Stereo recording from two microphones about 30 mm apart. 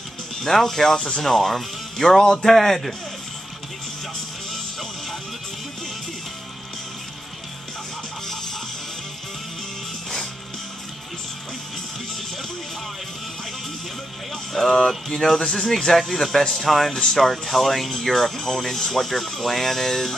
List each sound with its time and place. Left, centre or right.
0.4 s speech: centre
1.2 s speech: centre
14.3 s speech: centre